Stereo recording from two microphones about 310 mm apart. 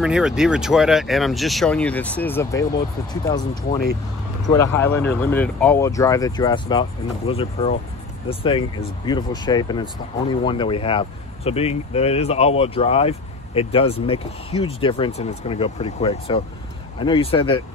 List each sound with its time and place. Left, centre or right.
0.0 s speech: centre
4.5 s speech: centre